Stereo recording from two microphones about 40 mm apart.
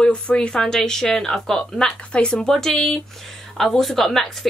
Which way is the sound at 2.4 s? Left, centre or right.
Centre.